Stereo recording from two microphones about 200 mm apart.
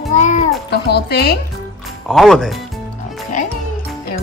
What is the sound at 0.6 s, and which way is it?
Speech, 55° left (ahead or behind).